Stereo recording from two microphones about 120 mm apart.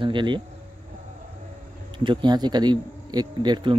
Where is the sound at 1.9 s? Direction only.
40° right (ahead or behind).